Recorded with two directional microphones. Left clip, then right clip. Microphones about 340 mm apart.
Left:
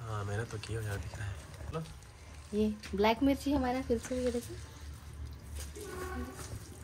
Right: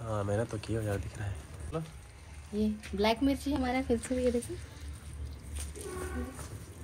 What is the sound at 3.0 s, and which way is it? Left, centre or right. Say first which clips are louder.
Speech: even; centre.